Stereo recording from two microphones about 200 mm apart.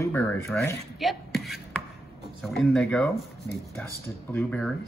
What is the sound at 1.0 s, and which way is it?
Beatboxing, centre (ahead or behind).